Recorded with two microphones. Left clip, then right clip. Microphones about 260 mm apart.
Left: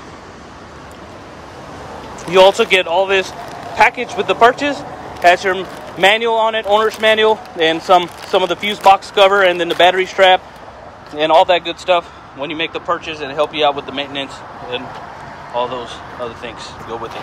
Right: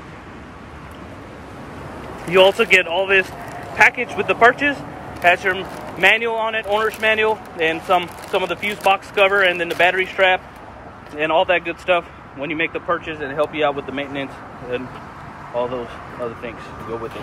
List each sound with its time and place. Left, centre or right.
2.3 s speech: centre